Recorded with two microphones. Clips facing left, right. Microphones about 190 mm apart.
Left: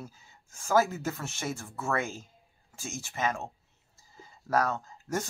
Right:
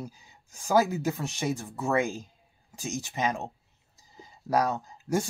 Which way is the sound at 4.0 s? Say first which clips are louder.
Right 2 dB; 15° right (ahead or behind).